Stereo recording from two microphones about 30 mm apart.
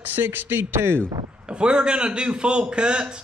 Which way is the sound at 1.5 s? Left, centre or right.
Right.